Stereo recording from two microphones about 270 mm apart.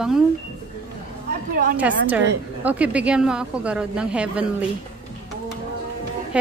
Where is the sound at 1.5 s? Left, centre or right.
Right.